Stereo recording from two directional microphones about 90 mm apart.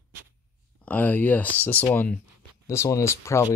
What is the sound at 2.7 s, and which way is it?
Speech, 35° left (ahead or behind).